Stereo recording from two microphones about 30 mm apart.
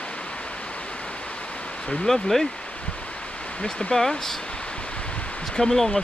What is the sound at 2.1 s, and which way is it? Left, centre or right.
Speech, centre.